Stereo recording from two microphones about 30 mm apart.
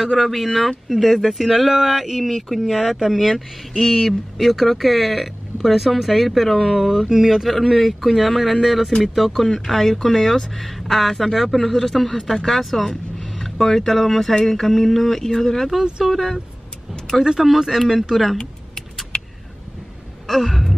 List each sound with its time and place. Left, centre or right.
0.0 s speech: centre
1.5 s speech: centre
3.7 s speech: centre
4.4 s speech: centre
7.1 s speech: centre
7.4 s speech: centre
17.2 s speech: right
17.6 s speech: centre
20.2 s speech: centre